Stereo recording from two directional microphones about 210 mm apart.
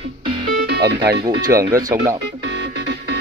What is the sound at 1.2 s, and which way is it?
Speech, 15° right (ahead or behind).